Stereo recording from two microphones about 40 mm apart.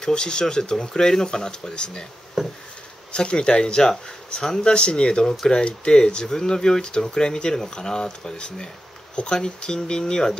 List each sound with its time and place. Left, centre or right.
0.0 s speech: centre
2.4 s a sound: centre
3.1 s speech: left